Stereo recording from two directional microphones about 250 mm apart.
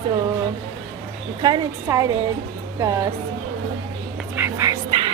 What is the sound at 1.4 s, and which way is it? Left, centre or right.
A woman's voice, centre.